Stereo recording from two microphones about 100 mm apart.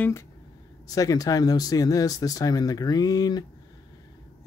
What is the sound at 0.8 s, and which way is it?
Speech, 40° left (ahead or behind).